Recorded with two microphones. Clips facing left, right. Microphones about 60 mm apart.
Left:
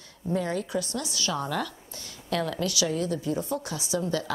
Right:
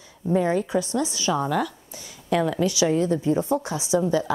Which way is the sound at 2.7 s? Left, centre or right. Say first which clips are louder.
Right 6 dB; right.